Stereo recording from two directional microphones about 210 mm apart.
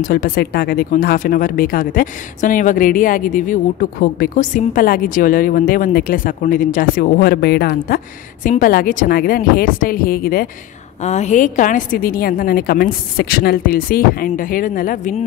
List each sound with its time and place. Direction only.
0.0 s a woman's voice: 40° left (ahead or behind)
11.0 s a woman's voice: 35° left (ahead or behind)